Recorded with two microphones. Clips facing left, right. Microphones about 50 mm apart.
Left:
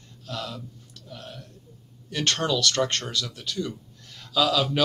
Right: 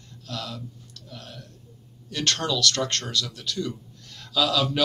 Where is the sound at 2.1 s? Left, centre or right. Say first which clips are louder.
Left 1 dB; left.